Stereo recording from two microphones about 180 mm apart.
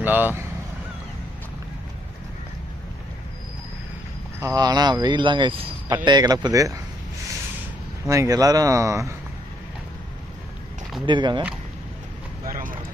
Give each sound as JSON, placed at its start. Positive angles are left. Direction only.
{"t": 0.0, "sound": "speech", "side_deg": -10}
{"t": 4.4, "sound": "speech", "side_deg": -20}
{"t": 8.1, "sound": "speech", "side_deg": -20}
{"t": 11.1, "sound": "speech", "side_deg": -25}
{"t": 12.4, "sound": "vehicle", "side_deg": -50}